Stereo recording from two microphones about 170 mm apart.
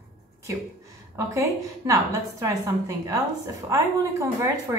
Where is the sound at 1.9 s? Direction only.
20° right (ahead or behind).